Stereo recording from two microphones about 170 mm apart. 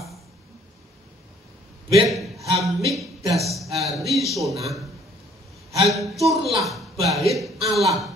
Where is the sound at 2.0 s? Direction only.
Centre (ahead or behind).